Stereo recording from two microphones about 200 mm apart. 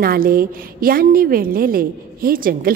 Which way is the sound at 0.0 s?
45° right (ahead or behind).